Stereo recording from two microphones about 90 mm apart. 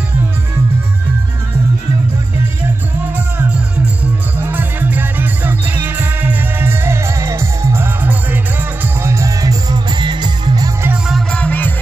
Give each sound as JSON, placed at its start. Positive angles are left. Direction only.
{"t": 3.3, "sound": "music", "side_deg": -15}
{"t": 9.0, "sound": "music", "side_deg": -35}
{"t": 11.3, "sound": "music", "side_deg": 15}